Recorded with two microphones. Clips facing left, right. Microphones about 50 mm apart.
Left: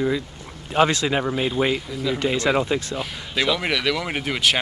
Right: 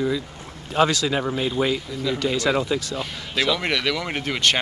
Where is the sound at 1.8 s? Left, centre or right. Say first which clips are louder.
Left 1 dB; centre.